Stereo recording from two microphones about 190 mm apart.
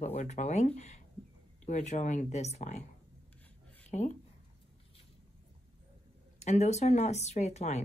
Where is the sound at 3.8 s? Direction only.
40° left (ahead or behind).